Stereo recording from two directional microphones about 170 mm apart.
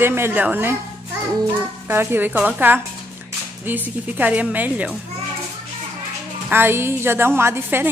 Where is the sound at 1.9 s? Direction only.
15° right (ahead or behind).